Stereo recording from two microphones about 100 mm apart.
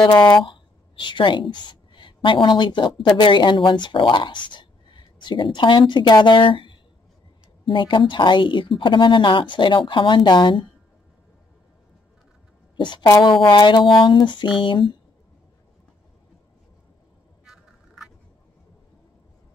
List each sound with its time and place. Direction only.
0.4 s a woman's voice: 50° left (ahead or behind)
12.7 s a woman's voice: 50° left (ahead or behind)
17.5 s vehicle: 5° right (ahead or behind)